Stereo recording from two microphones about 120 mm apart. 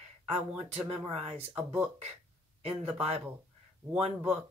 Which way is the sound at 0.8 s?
60° right (ahead or behind).